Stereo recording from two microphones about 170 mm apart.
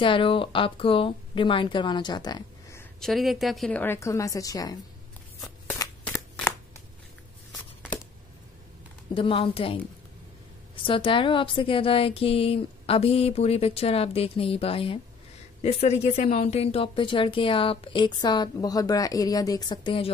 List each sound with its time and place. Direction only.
0.0 s a woman's voice: 30° left (ahead or behind)
3.0 s a woman's voice: centre (ahead or behind); by 4.7 s 20° left (ahead or behind)
6.0 s shuffling cards: 10° left (ahead or behind)
9.1 s speech: 30° left (ahead or behind)
10.8 s a woman's voice: 30° left (ahead or behind)